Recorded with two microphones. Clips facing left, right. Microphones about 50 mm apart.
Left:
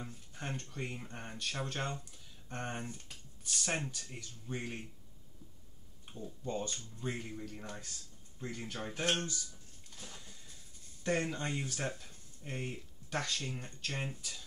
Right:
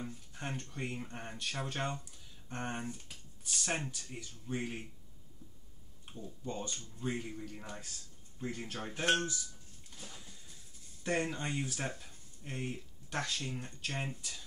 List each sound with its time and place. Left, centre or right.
0.0 s speech: centre
6.1 s speech: centre
9.8 s a sound: centre
11.1 s speech: centre